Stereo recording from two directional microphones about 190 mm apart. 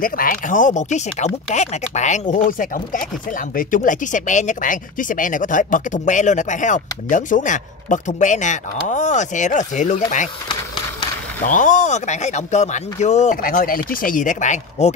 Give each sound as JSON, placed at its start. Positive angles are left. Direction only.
{"t": 0.0, "sound": "speech", "side_deg": 45}
{"t": 11.4, "sound": "speech", "side_deg": 40}